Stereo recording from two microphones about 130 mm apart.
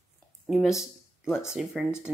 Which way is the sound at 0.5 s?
Centre (ahead or behind).